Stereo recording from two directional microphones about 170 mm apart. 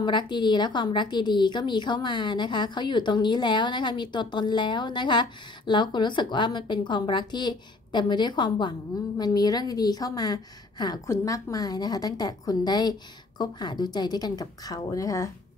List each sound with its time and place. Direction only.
0.0 s a woman's voice: 25° left (ahead or behind)